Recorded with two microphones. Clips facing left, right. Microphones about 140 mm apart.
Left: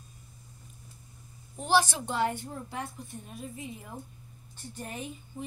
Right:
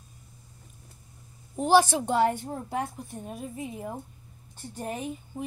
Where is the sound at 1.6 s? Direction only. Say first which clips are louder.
Right 5 dB; 45° right (ahead or behind).